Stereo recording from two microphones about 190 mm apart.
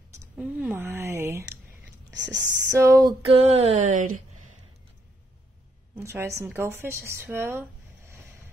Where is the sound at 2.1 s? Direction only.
70° right (ahead or behind).